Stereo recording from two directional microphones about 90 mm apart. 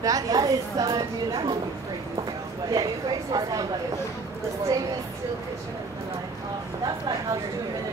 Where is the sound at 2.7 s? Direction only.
45° right (ahead or behind).